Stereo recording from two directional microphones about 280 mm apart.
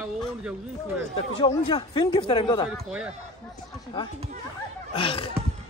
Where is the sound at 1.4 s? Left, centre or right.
Centre.